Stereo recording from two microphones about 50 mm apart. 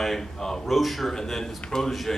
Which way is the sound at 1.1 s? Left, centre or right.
Centre.